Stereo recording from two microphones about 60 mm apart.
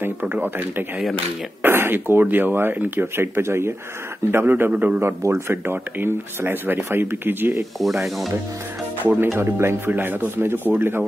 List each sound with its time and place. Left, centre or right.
0.0 s speech: right
5.5 s speech: right
7.8 s speech: centre
9.0 s speech: right
9.3 s speech: right